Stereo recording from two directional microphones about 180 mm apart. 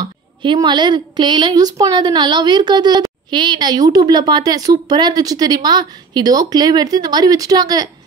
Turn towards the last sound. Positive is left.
turn(degrees=-20)  # may be behind; listen again after turning